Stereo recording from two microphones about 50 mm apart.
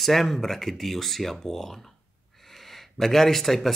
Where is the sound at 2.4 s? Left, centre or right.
Centre.